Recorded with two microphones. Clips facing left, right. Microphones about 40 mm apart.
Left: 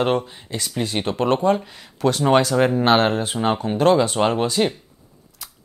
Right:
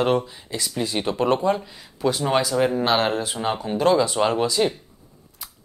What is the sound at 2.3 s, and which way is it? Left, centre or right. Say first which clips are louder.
Speech: left 7 dB; left.